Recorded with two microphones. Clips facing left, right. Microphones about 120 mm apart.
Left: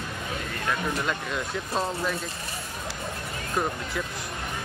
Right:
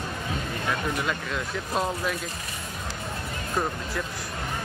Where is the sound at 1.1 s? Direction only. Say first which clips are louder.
Even; centre (ahead or behind).